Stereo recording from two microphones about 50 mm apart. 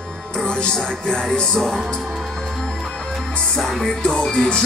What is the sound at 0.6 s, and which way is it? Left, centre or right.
Music, centre.